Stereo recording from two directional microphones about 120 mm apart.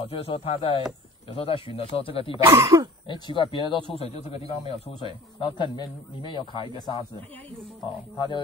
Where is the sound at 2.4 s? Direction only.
25° right (ahead or behind).